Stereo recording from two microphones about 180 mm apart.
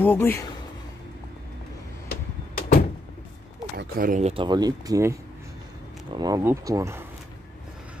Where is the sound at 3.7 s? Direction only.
55° right (ahead or behind).